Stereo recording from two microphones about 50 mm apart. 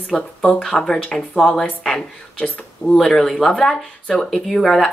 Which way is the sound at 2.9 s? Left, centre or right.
Centre.